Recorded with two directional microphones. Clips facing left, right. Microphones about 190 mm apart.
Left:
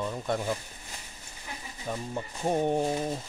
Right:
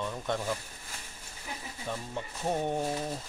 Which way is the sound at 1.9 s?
10° left (ahead or behind).